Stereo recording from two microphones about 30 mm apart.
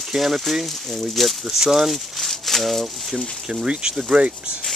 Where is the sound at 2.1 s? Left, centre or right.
Centre.